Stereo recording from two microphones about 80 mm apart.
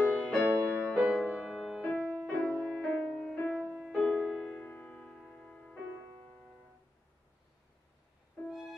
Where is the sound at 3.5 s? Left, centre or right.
Centre.